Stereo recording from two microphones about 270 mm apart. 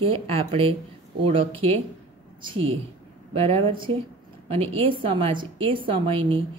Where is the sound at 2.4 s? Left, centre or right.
Centre.